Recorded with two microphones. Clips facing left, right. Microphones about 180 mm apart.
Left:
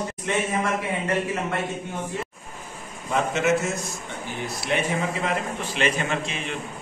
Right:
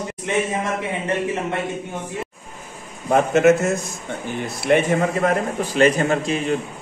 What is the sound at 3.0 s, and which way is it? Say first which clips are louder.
A man's voice: right 8 dB; 50° right (ahead or behind).